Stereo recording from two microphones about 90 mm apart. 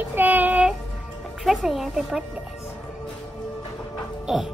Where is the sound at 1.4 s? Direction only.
5° right (ahead or behind).